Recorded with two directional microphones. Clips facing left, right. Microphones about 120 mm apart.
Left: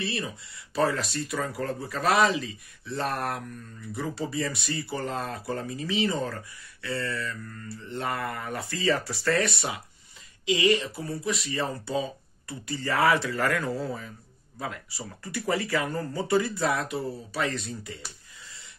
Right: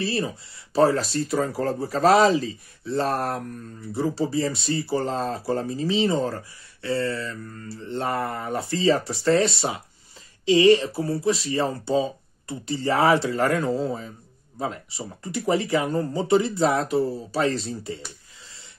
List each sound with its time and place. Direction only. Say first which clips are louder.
0.0 s speech: right 6 dB; 35° right (ahead or behind)